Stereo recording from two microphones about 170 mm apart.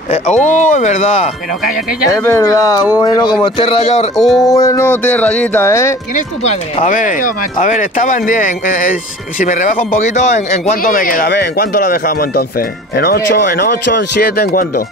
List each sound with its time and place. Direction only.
0.1 s speech: 45° left (ahead or behind)
2.0 s speech: 15° left (ahead or behind); by 4.1 s 40° left (ahead or behind)
4.4 s music: 20° left (ahead or behind)
6.4 s speech: 45° left (ahead or behind); by 14.7 s 60° left (ahead or behind)